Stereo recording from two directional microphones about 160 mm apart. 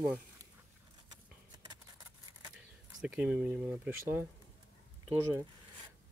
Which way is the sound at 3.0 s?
5° right (ahead or behind).